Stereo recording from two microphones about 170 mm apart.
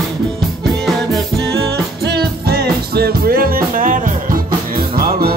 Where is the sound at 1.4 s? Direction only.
70° right (ahead or behind).